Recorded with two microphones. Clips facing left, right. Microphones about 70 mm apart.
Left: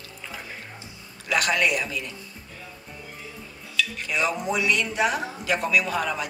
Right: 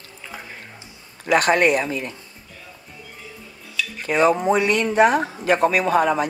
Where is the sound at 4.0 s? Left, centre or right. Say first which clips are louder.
Right 12 dB; right.